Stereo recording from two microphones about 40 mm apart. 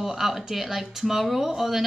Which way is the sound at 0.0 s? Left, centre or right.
Centre.